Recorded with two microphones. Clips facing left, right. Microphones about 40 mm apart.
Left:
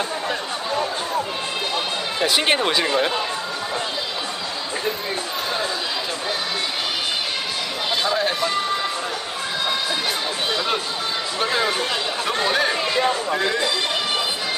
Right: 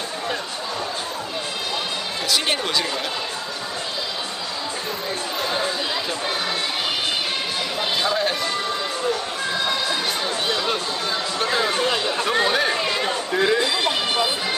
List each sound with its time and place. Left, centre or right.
2.2 s speech: left
8.0 s speech: centre
11.3 s a sound: centre
11.8 s speech: centre